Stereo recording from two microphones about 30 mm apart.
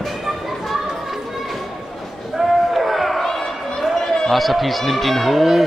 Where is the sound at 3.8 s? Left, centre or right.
Centre.